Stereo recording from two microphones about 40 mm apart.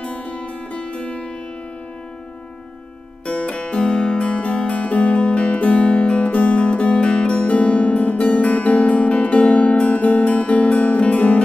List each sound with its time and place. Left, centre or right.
0.0 s music: left
3.3 s music: left